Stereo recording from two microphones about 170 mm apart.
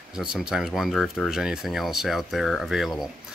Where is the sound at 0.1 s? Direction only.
5° right (ahead or behind).